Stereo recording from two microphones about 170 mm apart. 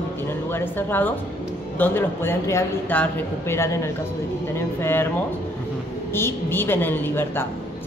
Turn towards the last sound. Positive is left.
turn(degrees=15)  # may be behind; listen again after turning